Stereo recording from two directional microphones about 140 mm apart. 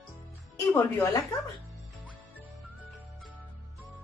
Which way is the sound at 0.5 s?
20° left (ahead or behind).